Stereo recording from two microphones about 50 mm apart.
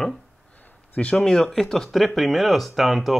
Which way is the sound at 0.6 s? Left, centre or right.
Left.